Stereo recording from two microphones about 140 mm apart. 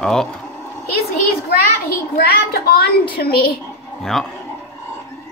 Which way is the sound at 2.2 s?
90° left.